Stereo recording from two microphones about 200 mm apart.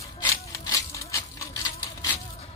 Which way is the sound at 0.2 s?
15° left (ahead or behind).